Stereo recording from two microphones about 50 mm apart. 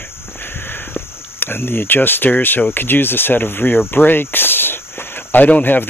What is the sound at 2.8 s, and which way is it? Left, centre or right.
Speech, left.